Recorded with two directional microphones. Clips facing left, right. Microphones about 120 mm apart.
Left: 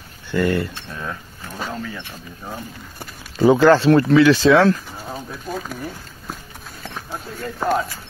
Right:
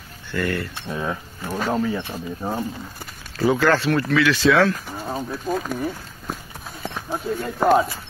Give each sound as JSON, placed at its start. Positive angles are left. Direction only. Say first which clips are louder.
{"t": 0.3, "sound": "speech", "louder": "left 5 dB", "side_deg": 20}
{"t": 0.8, "sound": "speech", "louder": "right 4 dB", "side_deg": -15}
{"t": 1.7, "sound": "speech", "louder": "right 7 dB", "side_deg": -30}
{"t": 3.3, "sound": "speech", "louder": "left 6 dB", "side_deg": 25}
{"t": 5.3, "sound": "speech", "louder": "right 4 dB", "side_deg": 0}
{"t": 6.8, "sound": "clip-clop", "louder": "right 4 dB", "side_deg": -15}
{"t": 7.6, "sound": "speech", "louder": "right 4 dB", "side_deg": -10}